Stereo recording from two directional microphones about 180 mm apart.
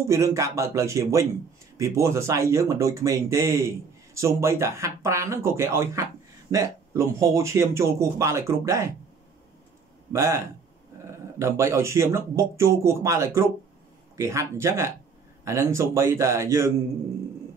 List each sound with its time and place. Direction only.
0.1 s speech: 15° right (ahead or behind)
10.1 s speech: 15° right (ahead or behind)